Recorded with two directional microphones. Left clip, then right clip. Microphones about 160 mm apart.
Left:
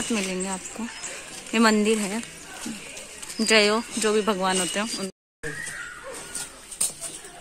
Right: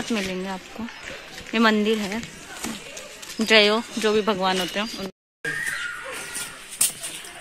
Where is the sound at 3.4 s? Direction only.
Centre (ahead or behind).